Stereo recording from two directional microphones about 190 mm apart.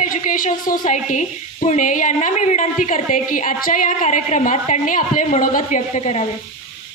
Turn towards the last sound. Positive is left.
turn(degrees=35)  # may be behind; listen again after turning